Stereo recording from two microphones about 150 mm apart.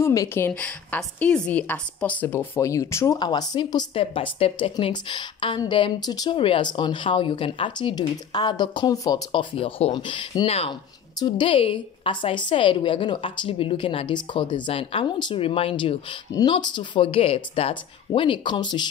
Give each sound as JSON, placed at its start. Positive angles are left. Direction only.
{"t": 0.0, "sound": "a woman's voice", "side_deg": 20}
{"t": 0.5, "sound": "a woman's voice", "side_deg": 10}
{"t": 9.3, "sound": "a woman's voice", "side_deg": 35}